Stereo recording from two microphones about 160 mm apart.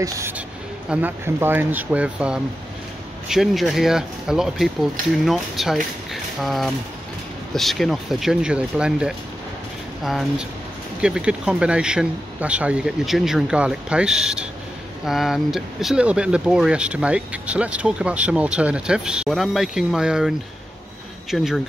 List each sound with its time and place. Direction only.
0.0 s speech: 15° right (ahead or behind)